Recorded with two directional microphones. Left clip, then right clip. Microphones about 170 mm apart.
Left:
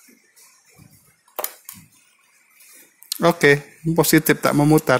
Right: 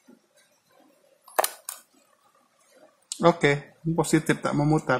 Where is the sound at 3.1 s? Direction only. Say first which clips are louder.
Left 5 dB; 25° left (ahead or behind).